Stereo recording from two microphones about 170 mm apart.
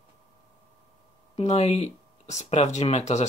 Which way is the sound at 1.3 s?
40° left (ahead or behind).